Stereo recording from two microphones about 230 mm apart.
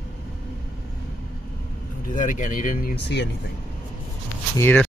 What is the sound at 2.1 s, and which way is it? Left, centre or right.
Speech, left.